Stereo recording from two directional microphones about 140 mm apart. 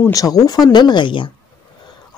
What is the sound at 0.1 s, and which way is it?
A woman's voice, 25° left (ahead or behind).